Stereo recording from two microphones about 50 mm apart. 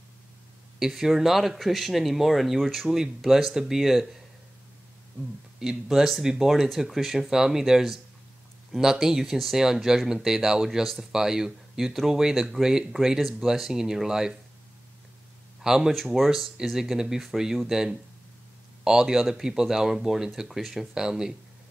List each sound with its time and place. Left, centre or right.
0.7 s speech: centre
5.6 s speech: centre
15.6 s speech: centre
15.9 s speech: centre